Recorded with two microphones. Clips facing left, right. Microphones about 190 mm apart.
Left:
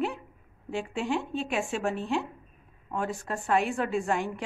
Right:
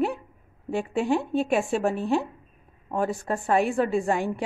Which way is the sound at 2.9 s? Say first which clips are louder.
Right 5 dB; 40° right (ahead or behind).